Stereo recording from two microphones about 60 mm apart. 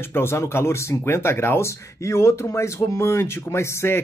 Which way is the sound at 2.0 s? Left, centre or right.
Left.